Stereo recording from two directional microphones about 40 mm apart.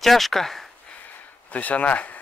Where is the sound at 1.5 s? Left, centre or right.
Left.